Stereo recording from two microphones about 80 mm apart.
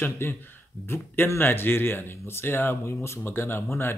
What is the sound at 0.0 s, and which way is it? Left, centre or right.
Speech, left.